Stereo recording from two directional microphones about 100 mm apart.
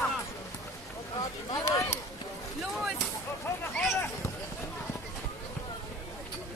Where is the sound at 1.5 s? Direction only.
30° left (ahead or behind).